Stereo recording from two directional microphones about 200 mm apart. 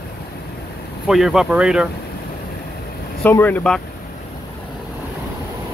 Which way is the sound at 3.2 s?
10° left (ahead or behind).